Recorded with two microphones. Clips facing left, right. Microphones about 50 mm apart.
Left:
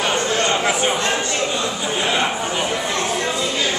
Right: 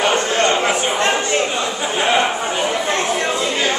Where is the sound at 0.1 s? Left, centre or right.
Right.